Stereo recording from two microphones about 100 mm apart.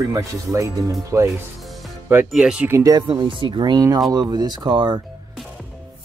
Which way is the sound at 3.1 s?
55° right (ahead or behind).